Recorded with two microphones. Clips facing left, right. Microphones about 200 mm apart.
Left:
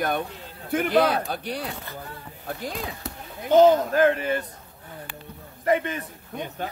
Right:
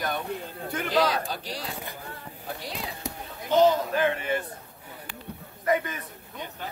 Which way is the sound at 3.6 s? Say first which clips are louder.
Left 5 dB; 45° left (ahead or behind).